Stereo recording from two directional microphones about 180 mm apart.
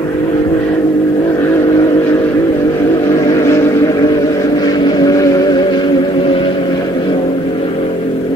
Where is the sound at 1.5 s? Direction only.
20° left (ahead or behind).